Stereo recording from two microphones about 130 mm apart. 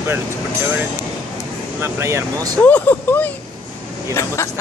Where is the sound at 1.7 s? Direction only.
20° right (ahead or behind).